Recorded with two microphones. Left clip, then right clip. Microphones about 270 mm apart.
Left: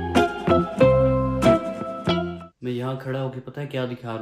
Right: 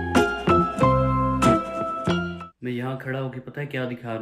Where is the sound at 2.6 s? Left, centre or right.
Centre.